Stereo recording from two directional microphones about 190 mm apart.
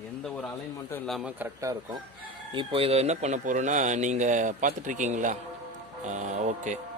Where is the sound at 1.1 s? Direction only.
5° right (ahead or behind).